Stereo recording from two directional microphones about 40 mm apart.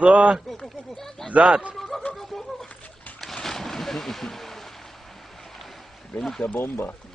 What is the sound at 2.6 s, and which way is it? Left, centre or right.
Splash, left.